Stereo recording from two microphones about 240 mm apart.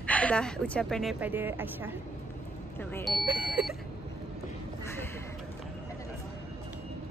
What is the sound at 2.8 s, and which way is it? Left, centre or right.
Speech, centre.